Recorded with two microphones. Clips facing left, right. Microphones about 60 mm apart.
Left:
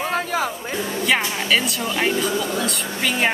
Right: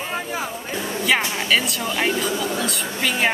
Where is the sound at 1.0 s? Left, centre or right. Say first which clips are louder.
Right 1 dB; centre.